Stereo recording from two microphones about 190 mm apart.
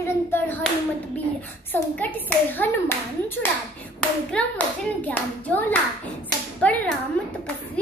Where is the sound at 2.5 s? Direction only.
10° left (ahead or behind).